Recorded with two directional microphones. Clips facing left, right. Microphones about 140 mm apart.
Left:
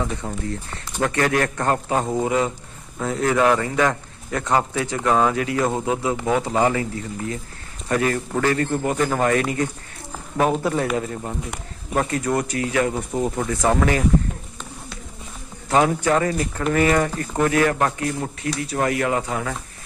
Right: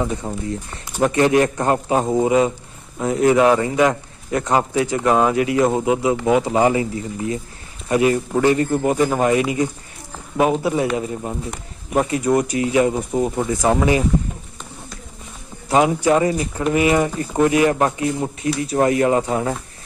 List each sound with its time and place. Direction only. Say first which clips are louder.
0.0 s a man's voice: right 3 dB; 20° right (ahead or behind)
15.7 s a man's voice: right 3 dB; 15° right (ahead or behind)